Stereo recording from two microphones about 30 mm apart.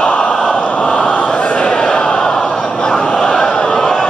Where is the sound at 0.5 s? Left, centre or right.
Left.